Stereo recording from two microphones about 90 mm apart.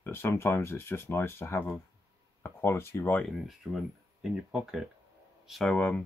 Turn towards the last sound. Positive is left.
turn(degrees=15)  # may be behind; listen again after turning